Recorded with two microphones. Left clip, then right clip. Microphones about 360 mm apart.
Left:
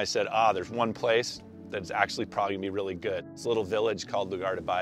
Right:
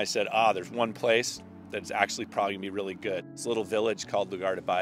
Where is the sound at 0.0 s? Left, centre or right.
Left.